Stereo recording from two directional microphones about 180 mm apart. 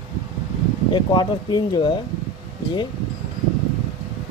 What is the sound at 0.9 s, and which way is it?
Speech, 25° left (ahead or behind).